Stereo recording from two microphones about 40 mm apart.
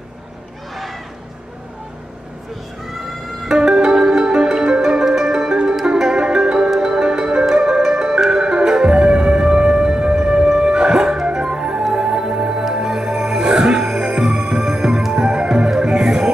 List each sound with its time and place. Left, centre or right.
3.4 s music: centre